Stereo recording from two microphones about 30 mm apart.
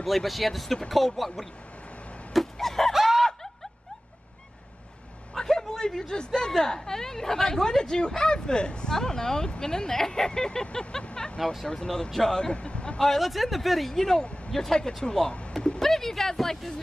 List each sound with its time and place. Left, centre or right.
0.0 s speech: centre
2.6 s a sound: centre
2.9 s a sound: centre
5.3 s a sound: centre
6.6 s speech: centre
8.9 s speech: centre
12.5 s a man's voice: left
13.2 s speech: centre
14.5 s speech: centre
15.8 s speech: centre